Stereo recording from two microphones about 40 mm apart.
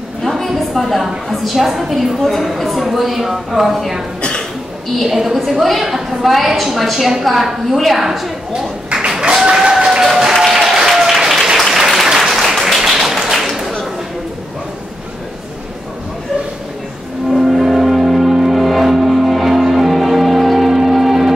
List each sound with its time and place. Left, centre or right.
0.2 s a sound: centre
1.0 s a woman's voice: centre
4.2 s cough: left
5.0 s a woman's voice: centre
9.2 s applause: centre
10.0 s applause: centre
12.7 s tap: centre
13.3 s whip: centre
17.3 s music: centre